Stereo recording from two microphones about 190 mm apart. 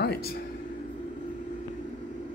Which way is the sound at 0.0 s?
55° left (ahead or behind).